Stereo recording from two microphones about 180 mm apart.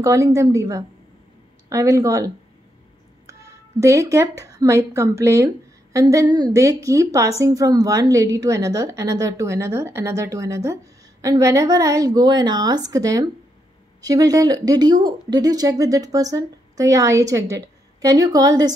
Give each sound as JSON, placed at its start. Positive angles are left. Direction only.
{"t": 0.0, "sound": "a woman's voice", "side_deg": -15}